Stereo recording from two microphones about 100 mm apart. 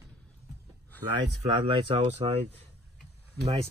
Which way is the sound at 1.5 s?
55° right (ahead or behind).